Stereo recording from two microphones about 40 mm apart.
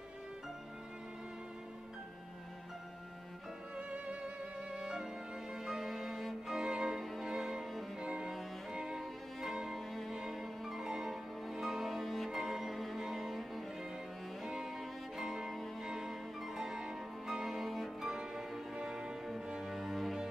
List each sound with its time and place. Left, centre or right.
3.7 s music: right; by 6.5 s centre
6.5 s music: centre
8.7 s music: centre
9.8 s music: centre
14.4 s music: centre
18.0 s music: centre
19.7 s music: centre